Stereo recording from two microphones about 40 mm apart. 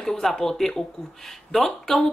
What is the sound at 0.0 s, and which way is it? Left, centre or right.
Speech, centre.